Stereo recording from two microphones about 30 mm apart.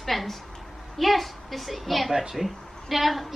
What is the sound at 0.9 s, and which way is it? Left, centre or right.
A woman's voice, centre.